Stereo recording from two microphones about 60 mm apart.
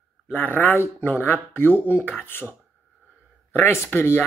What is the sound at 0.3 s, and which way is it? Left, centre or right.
Speech, left.